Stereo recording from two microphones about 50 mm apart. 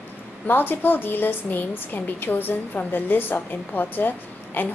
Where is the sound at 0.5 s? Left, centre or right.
Left.